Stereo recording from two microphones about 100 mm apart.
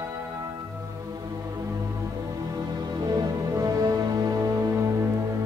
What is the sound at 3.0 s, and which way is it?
Music, 40° right (ahead or behind).